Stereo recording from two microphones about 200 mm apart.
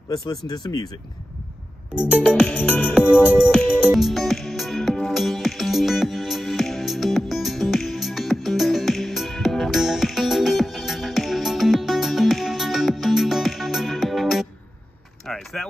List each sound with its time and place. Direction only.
0.1 s speech: 20° left (ahead or behind)
2.0 s music: 5° right (ahead or behind)
2.2 s music: 10° left (ahead or behind)
3.3 s music: 5° right (ahead or behind)
15.2 s vehicle: centre (ahead or behind)